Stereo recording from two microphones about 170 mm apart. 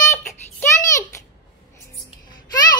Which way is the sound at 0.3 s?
20° left (ahead or behind).